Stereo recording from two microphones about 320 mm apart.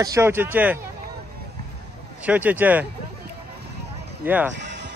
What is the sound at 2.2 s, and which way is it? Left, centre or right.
Speech, centre.